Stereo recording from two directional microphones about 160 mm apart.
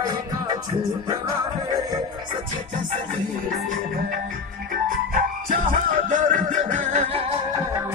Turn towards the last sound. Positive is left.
turn(degrees=-40)  # may be behind; listen again after turning